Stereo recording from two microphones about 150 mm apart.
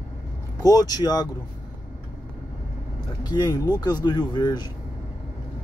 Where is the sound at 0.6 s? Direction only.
25° left (ahead or behind).